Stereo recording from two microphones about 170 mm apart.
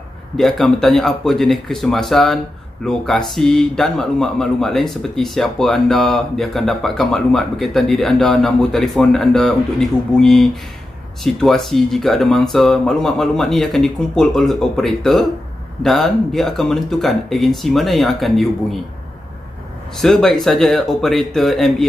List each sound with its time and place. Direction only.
0.4 s speech: centre (ahead or behind)
20.0 s speech: centre (ahead or behind)